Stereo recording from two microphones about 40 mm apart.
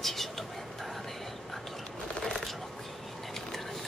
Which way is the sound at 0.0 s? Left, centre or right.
Centre.